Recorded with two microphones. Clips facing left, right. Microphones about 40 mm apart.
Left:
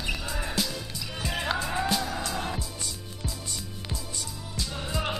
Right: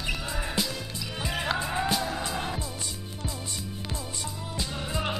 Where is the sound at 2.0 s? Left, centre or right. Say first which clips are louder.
Right 1 dB; centre.